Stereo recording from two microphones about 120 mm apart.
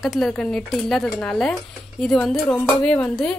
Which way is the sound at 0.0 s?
Centre (ahead or behind).